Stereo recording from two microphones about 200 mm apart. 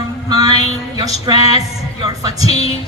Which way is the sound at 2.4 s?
30° left (ahead or behind).